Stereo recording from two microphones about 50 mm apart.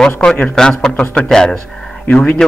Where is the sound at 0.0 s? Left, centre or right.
Centre.